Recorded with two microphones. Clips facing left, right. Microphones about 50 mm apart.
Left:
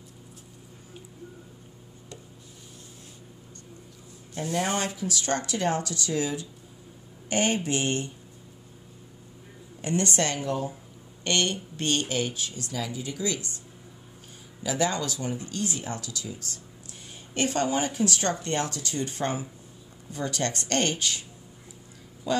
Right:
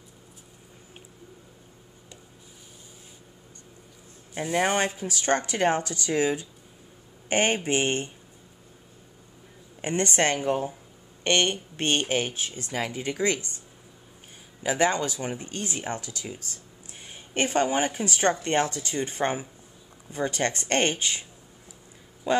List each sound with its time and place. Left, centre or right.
4.4 s speech: right
9.8 s speech: right
14.6 s speech: right